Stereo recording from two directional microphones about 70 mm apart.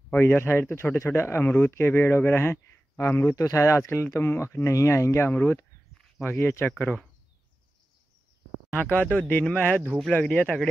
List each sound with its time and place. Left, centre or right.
0.1 s speech: left
8.7 s speech: centre